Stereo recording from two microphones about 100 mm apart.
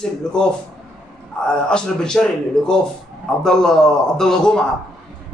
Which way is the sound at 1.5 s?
10° left (ahead or behind).